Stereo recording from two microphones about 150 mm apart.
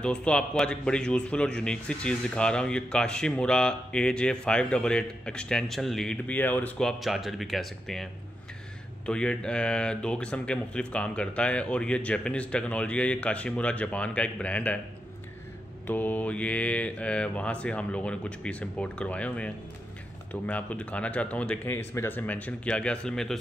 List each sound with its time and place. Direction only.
0.0 s a man's voice: 5° left (ahead or behind)
15.9 s speech: 10° left (ahead or behind)